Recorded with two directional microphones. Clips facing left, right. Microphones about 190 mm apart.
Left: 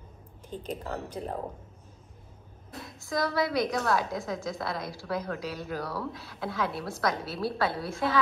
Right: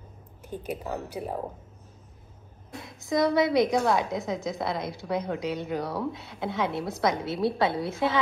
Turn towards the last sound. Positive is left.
turn(degrees=-20)  # may be behind; listen again after turning